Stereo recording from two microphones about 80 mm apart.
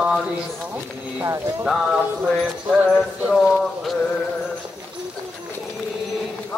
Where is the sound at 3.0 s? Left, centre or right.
Centre.